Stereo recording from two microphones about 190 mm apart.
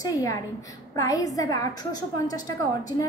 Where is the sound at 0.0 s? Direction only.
15° left (ahead or behind).